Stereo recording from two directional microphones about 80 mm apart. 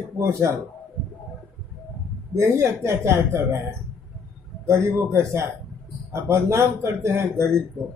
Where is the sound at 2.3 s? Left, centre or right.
Right.